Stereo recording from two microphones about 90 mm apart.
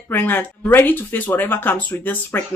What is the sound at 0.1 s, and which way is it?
Speech, 20° left (ahead or behind).